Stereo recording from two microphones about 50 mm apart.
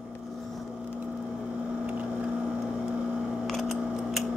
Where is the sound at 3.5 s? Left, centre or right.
Centre.